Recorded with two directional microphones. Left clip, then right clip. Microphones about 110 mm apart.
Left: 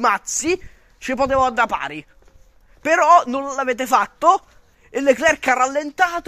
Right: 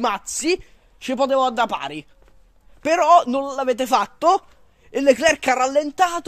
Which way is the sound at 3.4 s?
55° right (ahead or behind).